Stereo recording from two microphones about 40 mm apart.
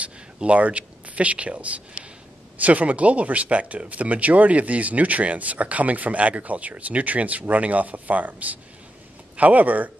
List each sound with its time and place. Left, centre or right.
0.0 s speech: right